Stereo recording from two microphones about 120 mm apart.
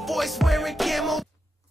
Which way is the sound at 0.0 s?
Centre (ahead or behind).